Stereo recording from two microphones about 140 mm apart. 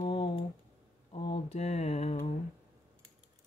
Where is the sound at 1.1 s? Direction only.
40° left (ahead or behind).